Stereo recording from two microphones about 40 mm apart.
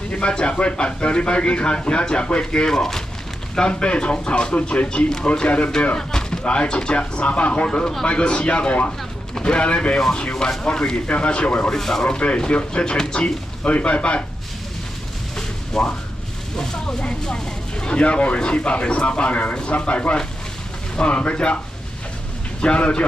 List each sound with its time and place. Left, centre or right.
0.1 s speech: left
2.7 s speech: centre
3.5 s speech: left
5.9 s speech: centre; by 11.6 s left
11.7 s speech: centre
13.7 s speech: left
15.7 s speech: centre
16.8 s speech: left
22.6 s speech: left